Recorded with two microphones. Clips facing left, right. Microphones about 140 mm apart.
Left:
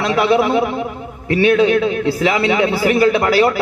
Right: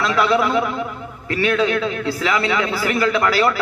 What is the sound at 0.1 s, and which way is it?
A man's voice, 25° left (ahead or behind).